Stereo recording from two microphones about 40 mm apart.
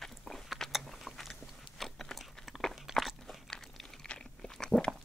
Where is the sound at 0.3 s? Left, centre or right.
Centre.